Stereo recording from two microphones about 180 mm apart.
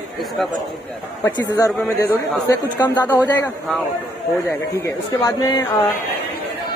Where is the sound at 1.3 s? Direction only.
20° left (ahead or behind).